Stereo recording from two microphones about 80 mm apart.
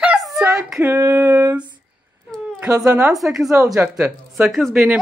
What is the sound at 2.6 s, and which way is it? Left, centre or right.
Speech, right.